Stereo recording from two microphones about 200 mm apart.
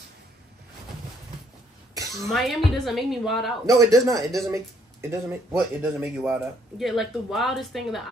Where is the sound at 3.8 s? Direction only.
15° right (ahead or behind).